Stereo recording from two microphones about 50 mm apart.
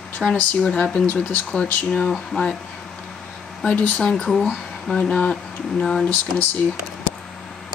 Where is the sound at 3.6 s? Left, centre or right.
Left.